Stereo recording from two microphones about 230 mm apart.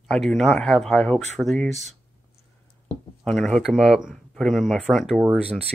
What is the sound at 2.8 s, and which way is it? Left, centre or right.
Speech, centre.